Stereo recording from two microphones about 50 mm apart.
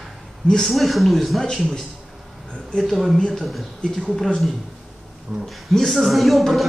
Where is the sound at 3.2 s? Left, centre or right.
Centre.